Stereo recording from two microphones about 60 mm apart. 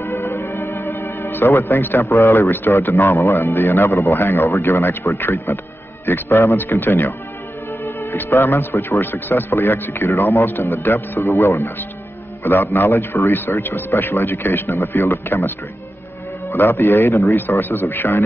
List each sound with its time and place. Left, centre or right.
0.0 s music: left
1.3 s speech: left
2.0 s a man's voice: left
2.3 s speech: left
12.4 s speech: left